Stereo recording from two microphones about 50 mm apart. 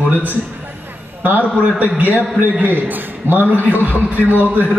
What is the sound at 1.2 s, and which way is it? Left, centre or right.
A man's voice, right.